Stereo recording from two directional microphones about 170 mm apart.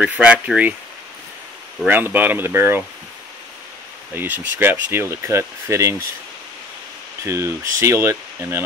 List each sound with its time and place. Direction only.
0.0 s speech: 5° right (ahead or behind)
1.9 s speech: 10° right (ahead or behind)
4.1 s speech: 10° right (ahead or behind)
7.2 s speech: 15° right (ahead or behind)